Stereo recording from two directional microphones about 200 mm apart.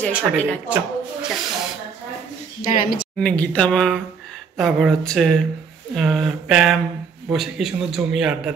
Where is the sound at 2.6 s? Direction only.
50° left (ahead or behind).